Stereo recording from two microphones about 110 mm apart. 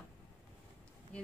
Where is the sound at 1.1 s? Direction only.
10° left (ahead or behind).